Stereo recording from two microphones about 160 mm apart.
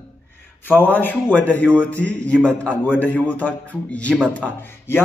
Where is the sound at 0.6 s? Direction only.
10° left (ahead or behind).